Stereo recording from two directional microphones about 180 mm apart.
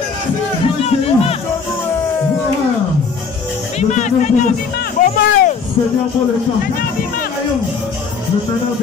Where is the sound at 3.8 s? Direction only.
40° left (ahead or behind).